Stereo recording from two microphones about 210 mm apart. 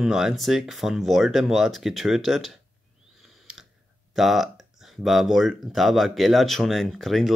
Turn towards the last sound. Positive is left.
turn(degrees=0)  # may be behind; listen again after turning